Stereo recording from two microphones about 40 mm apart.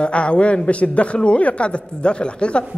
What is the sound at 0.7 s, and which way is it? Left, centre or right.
Speech, left.